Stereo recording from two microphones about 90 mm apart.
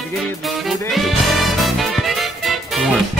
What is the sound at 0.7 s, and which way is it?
Music, centre (ahead or behind).